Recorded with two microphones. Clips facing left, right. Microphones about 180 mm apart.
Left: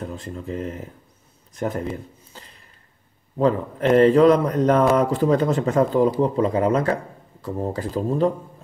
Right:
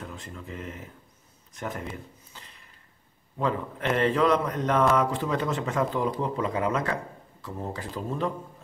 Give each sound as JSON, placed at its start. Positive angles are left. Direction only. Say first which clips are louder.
{"t": 0.0, "sound": "a man's voice", "louder": "left 9 dB", "side_deg": 35}
{"t": 3.3, "sound": "a man's voice", "louder": "left 8 dB", "side_deg": 35}